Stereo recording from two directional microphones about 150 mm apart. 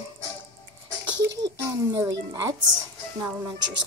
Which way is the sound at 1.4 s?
20° right (ahead or behind).